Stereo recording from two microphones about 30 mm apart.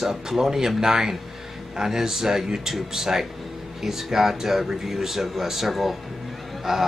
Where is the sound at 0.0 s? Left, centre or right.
Centre.